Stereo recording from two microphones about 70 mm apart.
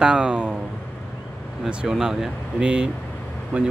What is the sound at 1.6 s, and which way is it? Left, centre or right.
Speech, centre.